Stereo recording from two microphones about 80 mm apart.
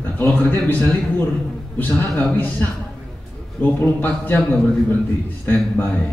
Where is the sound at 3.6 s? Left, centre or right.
Left.